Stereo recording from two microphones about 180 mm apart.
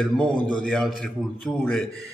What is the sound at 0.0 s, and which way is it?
A man's voice, 5° left (ahead or behind).